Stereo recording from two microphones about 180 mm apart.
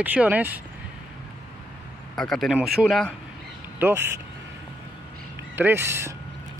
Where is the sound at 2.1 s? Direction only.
Centre (ahead or behind).